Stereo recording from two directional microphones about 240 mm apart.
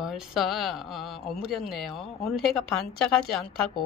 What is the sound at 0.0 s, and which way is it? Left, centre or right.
A woman's voice, centre.